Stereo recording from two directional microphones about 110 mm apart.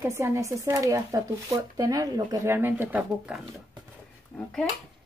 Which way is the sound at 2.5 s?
20° right (ahead or behind).